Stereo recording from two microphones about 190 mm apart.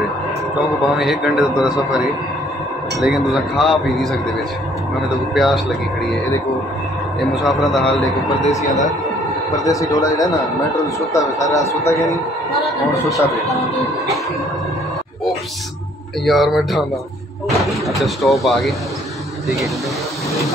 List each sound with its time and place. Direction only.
0.9 s a man's voice: centre (ahead or behind)
5.3 s a man's voice: centre (ahead or behind)
7.4 s a man's voice: centre (ahead or behind)
7.8 s a man's voice: 20° left (ahead or behind)
9.7 s a man's voice: 15° left (ahead or behind)
16.3 s a man's voice: centre (ahead or behind)